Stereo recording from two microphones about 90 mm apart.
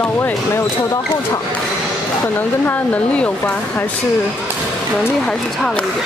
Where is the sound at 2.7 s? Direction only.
15° left (ahead or behind).